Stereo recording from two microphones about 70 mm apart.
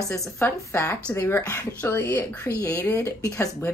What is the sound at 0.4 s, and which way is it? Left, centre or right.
Speech, left.